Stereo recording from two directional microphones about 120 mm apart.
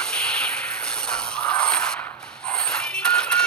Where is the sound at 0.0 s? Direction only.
5° left (ahead or behind).